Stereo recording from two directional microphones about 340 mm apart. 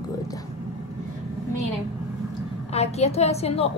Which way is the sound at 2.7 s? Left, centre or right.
Centre.